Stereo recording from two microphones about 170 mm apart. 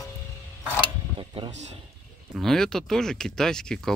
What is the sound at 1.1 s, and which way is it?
Tick-tock, 30° right (ahead or behind).